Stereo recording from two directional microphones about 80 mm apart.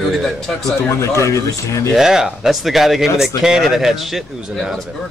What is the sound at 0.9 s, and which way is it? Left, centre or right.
Speech, left.